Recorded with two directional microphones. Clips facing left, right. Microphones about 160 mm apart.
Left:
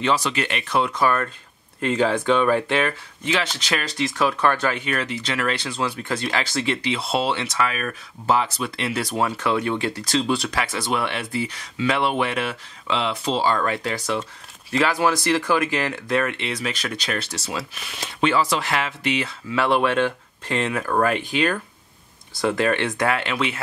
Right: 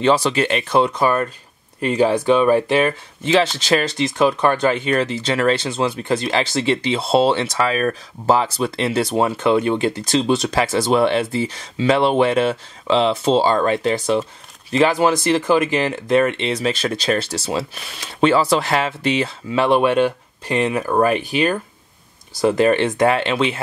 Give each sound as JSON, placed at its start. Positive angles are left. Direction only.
{"t": 0.0, "sound": "speech", "side_deg": -30}